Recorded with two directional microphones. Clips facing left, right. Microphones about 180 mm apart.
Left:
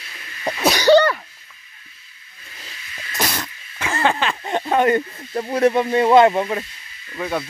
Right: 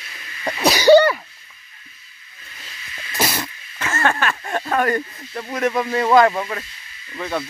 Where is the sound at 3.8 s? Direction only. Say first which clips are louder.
Left 1 dB; 15° left (ahead or behind).